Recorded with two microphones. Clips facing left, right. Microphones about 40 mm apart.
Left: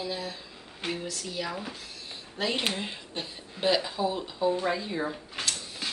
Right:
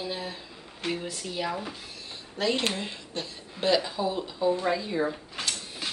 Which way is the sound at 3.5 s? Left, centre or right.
Centre.